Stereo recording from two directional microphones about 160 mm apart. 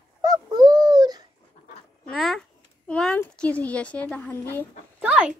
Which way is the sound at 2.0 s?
5° left (ahead or behind).